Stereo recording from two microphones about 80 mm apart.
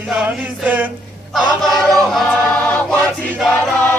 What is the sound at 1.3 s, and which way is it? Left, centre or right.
Choir, centre.